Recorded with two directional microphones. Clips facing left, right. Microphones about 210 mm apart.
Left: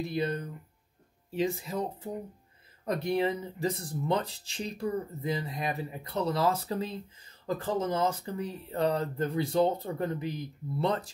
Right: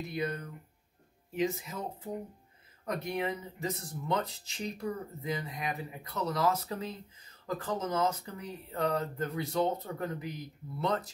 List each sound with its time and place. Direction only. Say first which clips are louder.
0.0 s speech: left 4 dB; 30° left (ahead or behind)
2.8 s speech: left 6 dB; 30° left (ahead or behind)